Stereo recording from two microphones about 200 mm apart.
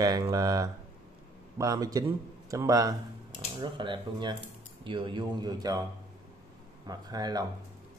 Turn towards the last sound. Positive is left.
turn(degrees=-20)  # may be behind; listen again after turning